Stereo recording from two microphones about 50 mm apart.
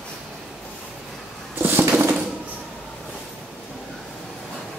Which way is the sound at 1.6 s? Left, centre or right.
Right.